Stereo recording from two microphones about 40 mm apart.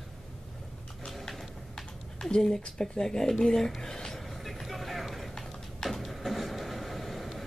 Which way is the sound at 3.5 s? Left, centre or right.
Centre.